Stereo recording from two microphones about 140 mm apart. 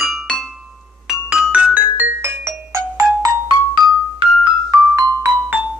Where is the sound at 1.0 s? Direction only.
5° right (ahead or behind).